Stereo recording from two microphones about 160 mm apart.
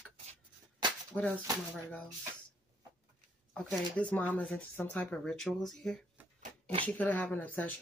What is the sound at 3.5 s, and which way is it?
Speech, 5° left (ahead or behind).